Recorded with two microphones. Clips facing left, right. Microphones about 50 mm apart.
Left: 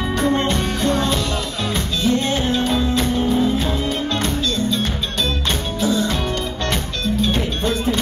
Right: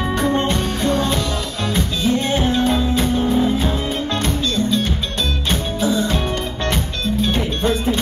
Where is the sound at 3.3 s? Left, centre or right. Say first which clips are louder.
Right 1 dB; centre.